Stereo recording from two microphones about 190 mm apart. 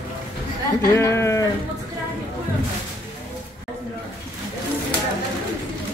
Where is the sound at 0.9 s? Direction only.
15° left (ahead or behind).